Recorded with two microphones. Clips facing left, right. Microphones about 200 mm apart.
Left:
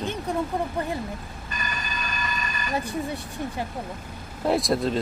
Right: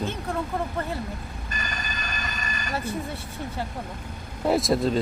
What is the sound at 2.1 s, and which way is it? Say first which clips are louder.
Train: left 3 dB; 45° right (ahead or behind).